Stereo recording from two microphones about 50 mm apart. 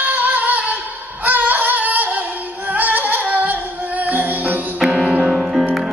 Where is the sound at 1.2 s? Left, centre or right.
Right.